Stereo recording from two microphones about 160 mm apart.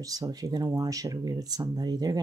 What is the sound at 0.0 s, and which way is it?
Speech, 20° right (ahead or behind).